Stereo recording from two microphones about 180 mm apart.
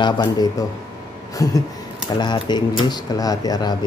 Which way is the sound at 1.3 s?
20° left (ahead or behind).